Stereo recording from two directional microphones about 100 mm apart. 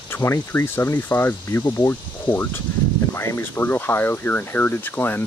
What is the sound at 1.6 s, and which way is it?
Speech, 40° left (ahead or behind).